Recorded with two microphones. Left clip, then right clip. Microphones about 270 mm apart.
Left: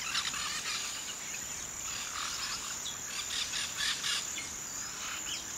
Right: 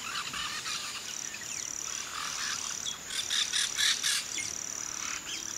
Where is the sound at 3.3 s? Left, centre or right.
Right.